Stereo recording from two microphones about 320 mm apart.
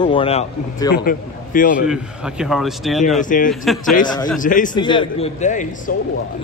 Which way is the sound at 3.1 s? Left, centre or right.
Left.